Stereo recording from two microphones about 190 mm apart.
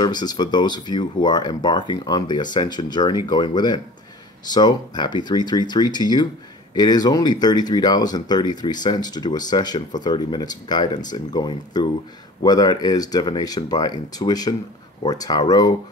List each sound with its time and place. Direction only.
0.0 s speech: 20° left (ahead or behind)